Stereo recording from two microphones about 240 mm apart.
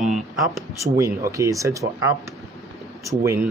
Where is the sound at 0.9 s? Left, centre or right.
Centre.